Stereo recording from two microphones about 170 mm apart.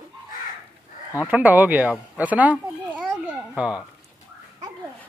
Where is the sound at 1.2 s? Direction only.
10° right (ahead or behind).